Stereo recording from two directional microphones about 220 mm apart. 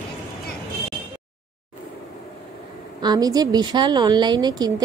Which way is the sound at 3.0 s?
15° right (ahead or behind).